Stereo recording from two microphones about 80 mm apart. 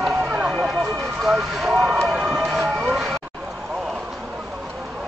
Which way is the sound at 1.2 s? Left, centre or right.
Centre.